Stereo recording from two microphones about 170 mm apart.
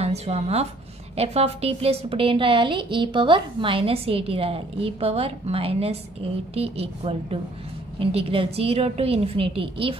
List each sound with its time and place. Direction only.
0.0 s a woman's voice: 35° right (ahead or behind)